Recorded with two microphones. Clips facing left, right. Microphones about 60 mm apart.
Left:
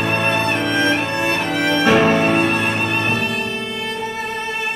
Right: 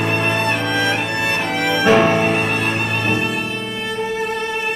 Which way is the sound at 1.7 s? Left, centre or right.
Centre.